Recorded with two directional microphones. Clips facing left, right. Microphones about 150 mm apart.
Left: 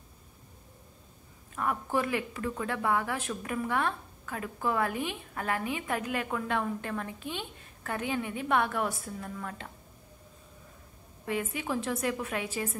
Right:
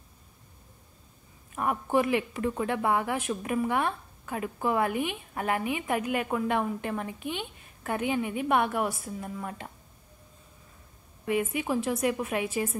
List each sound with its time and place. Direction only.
1.5 s speech: 20° right (ahead or behind)
11.2 s speech: 15° right (ahead or behind)